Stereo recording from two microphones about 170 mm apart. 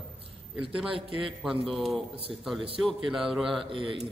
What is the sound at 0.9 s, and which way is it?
Speech, 30° right (ahead or behind).